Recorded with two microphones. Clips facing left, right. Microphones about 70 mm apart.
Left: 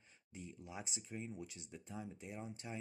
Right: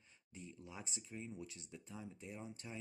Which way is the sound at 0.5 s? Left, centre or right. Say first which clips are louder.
Left 3 dB; centre.